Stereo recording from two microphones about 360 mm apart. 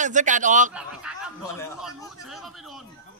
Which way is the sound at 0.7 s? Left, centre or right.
Centre.